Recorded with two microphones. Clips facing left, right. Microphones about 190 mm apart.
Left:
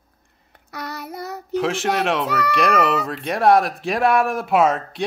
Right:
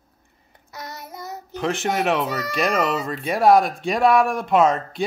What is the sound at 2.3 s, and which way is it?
Speech, 65° left (ahead or behind).